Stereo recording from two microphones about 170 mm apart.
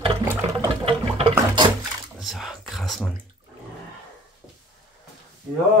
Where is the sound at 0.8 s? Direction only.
35° right (ahead or behind).